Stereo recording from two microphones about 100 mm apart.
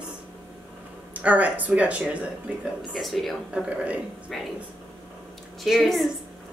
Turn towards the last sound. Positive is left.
turn(degrees=0)  # may be behind; listen again after turning